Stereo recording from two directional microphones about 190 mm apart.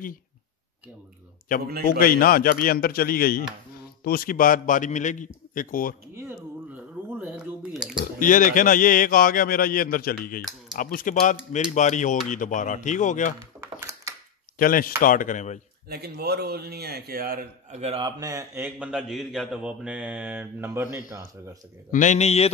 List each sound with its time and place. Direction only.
1.9 s speech: 50° left (ahead or behind)
6.1 s a sound: 10° right (ahead or behind)
8.0 s speech: 45° left (ahead or behind)
13.6 s a sound: 15° right (ahead or behind)
14.6 s speech: 50° left (ahead or behind)
15.9 s a man's voice: 55° right (ahead or behind)
17.7 s a man's voice: 30° right (ahead or behind); by 21.0 s 10° right (ahead or behind)
21.9 s speech: 40° left (ahead or behind)